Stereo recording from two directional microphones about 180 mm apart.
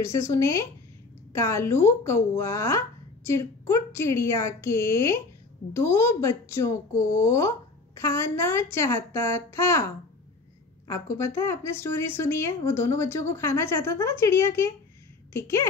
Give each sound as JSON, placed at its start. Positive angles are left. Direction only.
{"t": 0.0, "sound": "speech", "side_deg": 15}
{"t": 10.9, "sound": "speech", "side_deg": 15}